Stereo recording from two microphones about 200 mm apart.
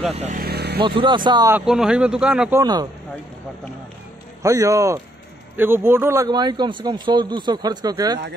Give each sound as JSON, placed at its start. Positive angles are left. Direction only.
{"t": 0.2, "sound": "vehicle", "side_deg": -45}
{"t": 0.8, "sound": "speech", "side_deg": -25}
{"t": 1.5, "sound": "speech", "side_deg": -5}
{"t": 2.6, "sound": "speech", "side_deg": -20}
{"t": 4.4, "sound": "a man's voice", "side_deg": -15}